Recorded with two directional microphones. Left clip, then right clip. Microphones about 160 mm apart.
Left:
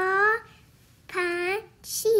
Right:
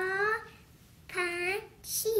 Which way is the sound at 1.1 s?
90° left.